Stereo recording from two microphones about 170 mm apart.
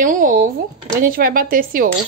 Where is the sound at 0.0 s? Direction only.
50° right (ahead or behind).